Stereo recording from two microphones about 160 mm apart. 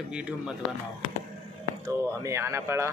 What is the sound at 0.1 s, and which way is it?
Speech, 5° right (ahead or behind).